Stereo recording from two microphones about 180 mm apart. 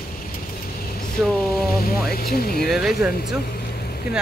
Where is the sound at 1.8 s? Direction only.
55° left (ahead or behind).